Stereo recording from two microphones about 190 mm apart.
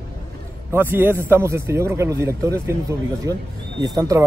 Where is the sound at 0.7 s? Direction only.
10° right (ahead or behind).